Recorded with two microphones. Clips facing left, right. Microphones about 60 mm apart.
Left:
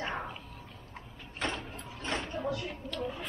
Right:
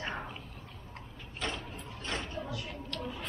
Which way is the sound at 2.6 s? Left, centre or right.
Centre.